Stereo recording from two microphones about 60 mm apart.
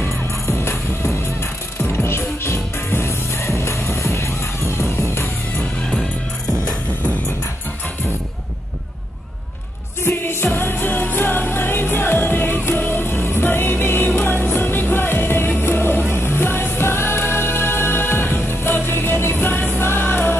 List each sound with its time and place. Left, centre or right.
0.5 s music: left
10.0 s music: left